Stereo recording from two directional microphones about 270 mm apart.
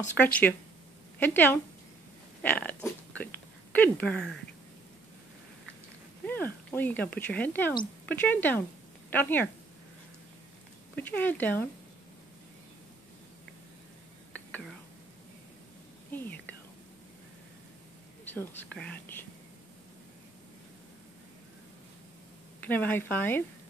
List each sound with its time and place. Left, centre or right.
0.2 s speech: centre
6.2 s speech: centre
11.0 s speech: centre
16.1 s speech: centre
18.3 s speech: centre
22.7 s speech: centre